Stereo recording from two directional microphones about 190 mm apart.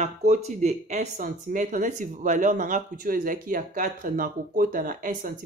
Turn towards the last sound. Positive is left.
turn(degrees=-45)  # may be behind; listen again after turning